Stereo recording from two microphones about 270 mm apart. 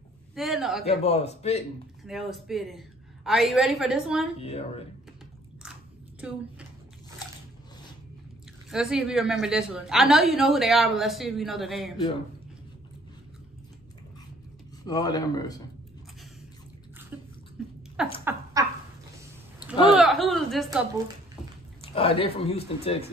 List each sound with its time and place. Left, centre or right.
0.3 s a woman's voice: centre
0.8 s speech: left
2.0 s a woman's voice: centre
4.4 s speech: left
8.6 s a woman's voice: centre
14.9 s speech: centre
17.1 s bathtub: centre
17.6 s a sound: centre
18.2 s a sound: centre
19.9 s a woman's voice: centre
21.8 s speech: left